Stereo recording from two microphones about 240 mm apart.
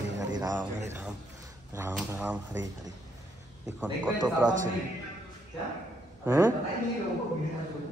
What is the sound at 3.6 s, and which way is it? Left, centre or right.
Speech, centre.